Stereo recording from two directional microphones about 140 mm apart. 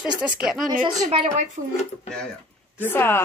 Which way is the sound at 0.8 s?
30° right (ahead or behind).